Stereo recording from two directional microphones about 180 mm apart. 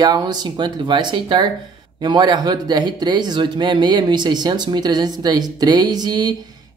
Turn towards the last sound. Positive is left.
turn(degrees=-20)  # may be behind; listen again after turning